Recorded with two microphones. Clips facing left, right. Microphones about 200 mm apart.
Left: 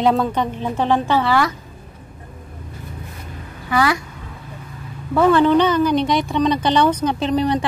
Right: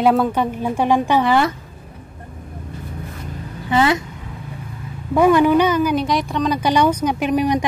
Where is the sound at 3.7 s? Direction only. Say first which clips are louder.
Right 2 dB; 25° right (ahead or behind).